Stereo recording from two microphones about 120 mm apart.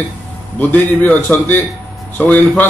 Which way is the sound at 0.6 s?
15° left (ahead or behind).